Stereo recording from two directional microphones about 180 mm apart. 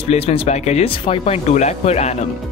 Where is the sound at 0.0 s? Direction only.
35° left (ahead or behind).